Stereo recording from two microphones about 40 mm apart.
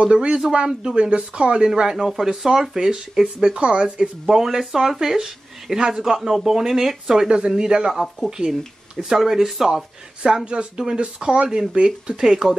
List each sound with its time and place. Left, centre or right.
0.0 s speech: right
1.7 s speech: centre
6.0 s speech: centre
7.2 s speech: centre
9.7 s speech: centre